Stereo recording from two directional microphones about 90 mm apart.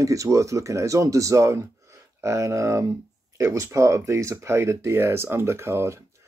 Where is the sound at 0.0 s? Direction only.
35° right (ahead or behind).